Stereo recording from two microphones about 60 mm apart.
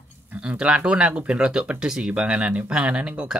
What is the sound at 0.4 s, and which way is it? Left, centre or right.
Speech, centre.